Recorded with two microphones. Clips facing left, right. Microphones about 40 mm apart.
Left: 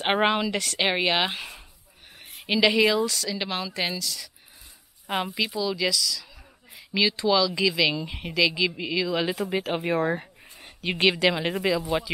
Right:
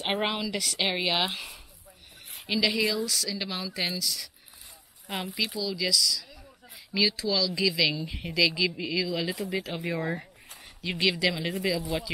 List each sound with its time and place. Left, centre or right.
0.2 s a woman's voice: centre
2.5 s a woman's voice: left
2.8 s a woman's voice: left
3.1 s speech: centre
5.0 s speech: left
5.8 s speech: centre; by 8.1 s left
8.1 s a woman's voice: centre; by 12.0 s left